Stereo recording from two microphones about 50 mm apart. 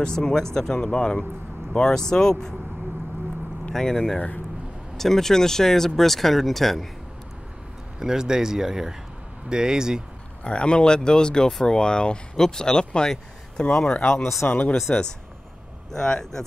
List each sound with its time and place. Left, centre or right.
0.2 s speech: centre
3.7 s speech: centre
8.0 s speech: centre
10.4 s speech: left
13.9 s speech: left
15.9 s speech: centre